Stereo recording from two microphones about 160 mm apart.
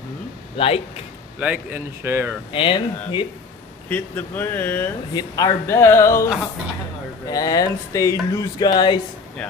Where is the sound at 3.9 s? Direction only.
10° left (ahead or behind).